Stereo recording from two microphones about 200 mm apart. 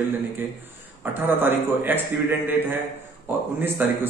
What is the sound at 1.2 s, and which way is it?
Speech, 10° right (ahead or behind).